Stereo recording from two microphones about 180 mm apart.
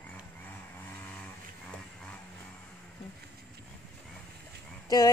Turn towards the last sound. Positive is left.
turn(degrees=20)  # may be behind; listen again after turning